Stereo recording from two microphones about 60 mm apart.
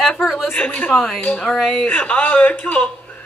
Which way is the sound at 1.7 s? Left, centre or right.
Left.